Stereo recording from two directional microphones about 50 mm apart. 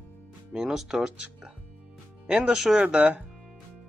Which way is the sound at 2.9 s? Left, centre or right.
Right.